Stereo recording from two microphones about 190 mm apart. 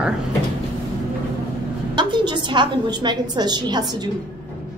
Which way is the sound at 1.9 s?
25° right (ahead or behind).